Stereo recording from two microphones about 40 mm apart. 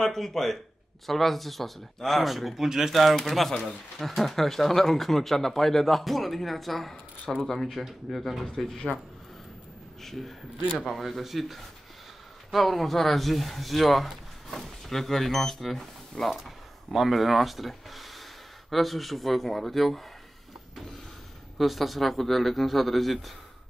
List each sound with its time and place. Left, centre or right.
0.0 s speech: centre
8.9 s speech: right
10.0 s speech: centre
21.5 s speech: centre